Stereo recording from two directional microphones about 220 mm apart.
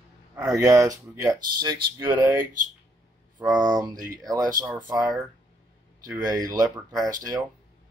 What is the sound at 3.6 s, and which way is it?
Speech, 15° right (ahead or behind).